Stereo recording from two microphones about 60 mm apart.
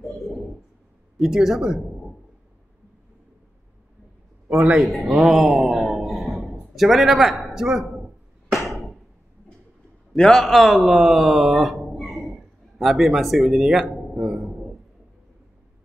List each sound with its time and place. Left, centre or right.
1.1 s speech: centre
4.5 s a man's voice: centre
4.7 s a man's voice: centre
8.5 s a sound: centre
10.1 s a man's voice: centre
10.4 s speech: centre